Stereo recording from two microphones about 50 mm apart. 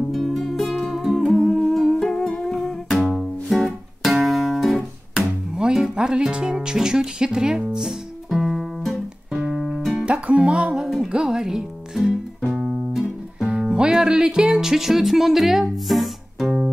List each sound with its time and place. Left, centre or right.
0.1 s music: centre
3.2 s guitar: centre
5.6 s music: centre
10.0 s music: right
10.5 s speech: centre
12.4 s music: centre
12.6 s music: centre
13.5 s music: right; by 16.7 s centre